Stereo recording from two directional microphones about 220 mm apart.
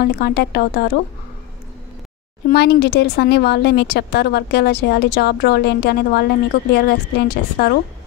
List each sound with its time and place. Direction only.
0.0 s speech: 45° left (ahead or behind)
2.5 s speech: 50° left (ahead or behind)